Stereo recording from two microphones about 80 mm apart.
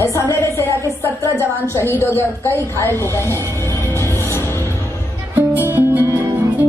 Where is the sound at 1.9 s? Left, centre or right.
Left.